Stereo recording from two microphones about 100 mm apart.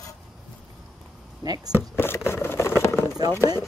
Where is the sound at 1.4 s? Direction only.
40° right (ahead or behind).